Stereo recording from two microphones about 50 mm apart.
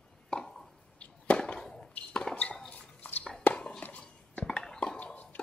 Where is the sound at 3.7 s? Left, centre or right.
Left.